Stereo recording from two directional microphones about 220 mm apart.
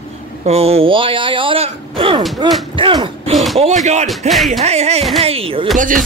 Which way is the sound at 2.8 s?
20° right (ahead or behind).